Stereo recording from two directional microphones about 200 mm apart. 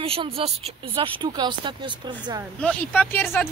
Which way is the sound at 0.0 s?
30° right (ahead or behind).